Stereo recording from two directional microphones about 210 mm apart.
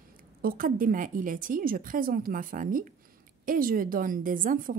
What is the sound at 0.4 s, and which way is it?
A woman's voice, 45° right (ahead or behind).